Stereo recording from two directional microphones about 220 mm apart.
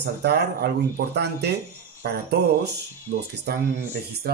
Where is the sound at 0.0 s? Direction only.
50° right (ahead or behind).